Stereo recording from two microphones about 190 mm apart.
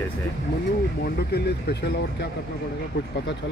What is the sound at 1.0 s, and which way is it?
Speech, 60° left (ahead or behind).